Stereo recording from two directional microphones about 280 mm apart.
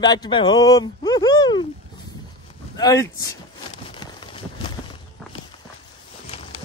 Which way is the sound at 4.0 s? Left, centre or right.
Centre.